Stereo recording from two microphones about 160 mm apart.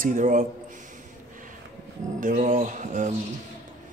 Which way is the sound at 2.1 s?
55° right (ahead or behind).